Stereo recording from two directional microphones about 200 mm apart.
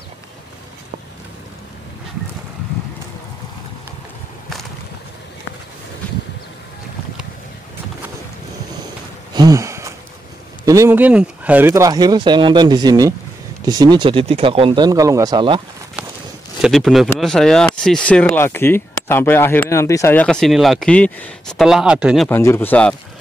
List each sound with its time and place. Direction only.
9.3 s gasp: 20° right (ahead or behind)
10.6 s speech: 15° right (ahead or behind)
16.6 s speech: centre (ahead or behind)
22.3 s speech: 10° left (ahead or behind)